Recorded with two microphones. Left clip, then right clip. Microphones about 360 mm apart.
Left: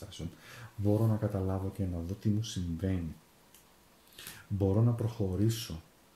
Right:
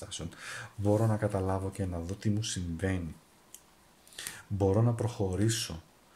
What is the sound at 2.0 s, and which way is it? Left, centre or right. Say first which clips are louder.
Speech: right 1 dB; centre.